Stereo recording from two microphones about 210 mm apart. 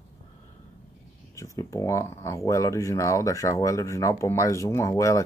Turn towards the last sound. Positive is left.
turn(degrees=15)  # may be behind; listen again after turning